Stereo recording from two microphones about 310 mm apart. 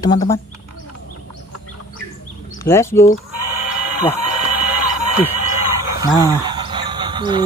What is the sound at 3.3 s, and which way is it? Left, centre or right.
Bleat, right.